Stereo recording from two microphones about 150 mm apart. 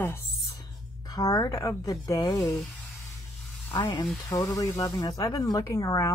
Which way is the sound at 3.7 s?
30° left (ahead or behind).